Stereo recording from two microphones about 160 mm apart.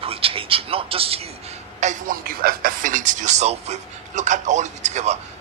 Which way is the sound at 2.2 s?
65° right (ahead or behind).